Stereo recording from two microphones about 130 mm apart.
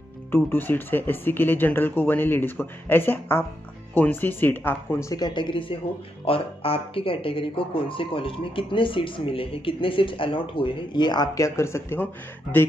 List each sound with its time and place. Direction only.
0.3 s speech: 15° left (ahead or behind)
5.1 s speech: 35° left (ahead or behind); by 12.1 s 20° left (ahead or behind)